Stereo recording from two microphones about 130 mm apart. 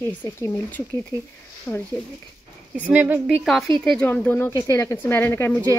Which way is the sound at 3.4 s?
5° left (ahead or behind).